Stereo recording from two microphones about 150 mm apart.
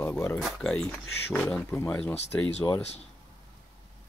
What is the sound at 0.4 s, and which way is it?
Speech, centre (ahead or behind).